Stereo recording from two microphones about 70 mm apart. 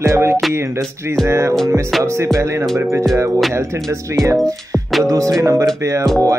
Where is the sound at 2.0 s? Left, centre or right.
Right.